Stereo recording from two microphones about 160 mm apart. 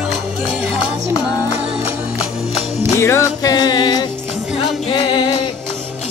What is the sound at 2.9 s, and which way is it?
Music, 20° left (ahead or behind).